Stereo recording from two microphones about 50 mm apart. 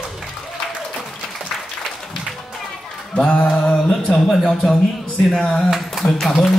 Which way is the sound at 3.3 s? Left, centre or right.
Left.